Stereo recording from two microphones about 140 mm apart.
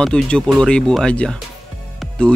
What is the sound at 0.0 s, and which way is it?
Music, 5° left (ahead or behind).